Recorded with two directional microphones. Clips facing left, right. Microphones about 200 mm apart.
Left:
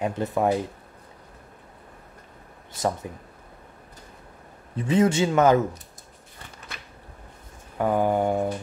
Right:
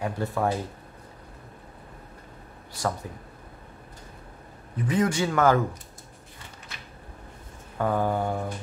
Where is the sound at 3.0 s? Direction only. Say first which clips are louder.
Left 3 dB; 20° left (ahead or behind).